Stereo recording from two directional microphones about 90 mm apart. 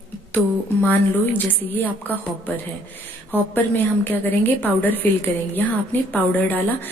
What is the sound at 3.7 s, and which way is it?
A woman's voice, 20° left (ahead or behind).